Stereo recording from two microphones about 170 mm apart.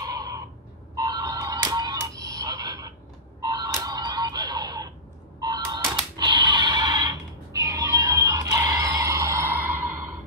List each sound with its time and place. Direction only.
0.0 s crow: 20° right (ahead or behind)
0.9 s music: 25° right (ahead or behind)
6.1 s a sound: 25° right (ahead or behind)